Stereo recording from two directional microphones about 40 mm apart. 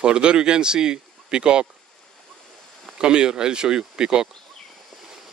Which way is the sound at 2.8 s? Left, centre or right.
Right.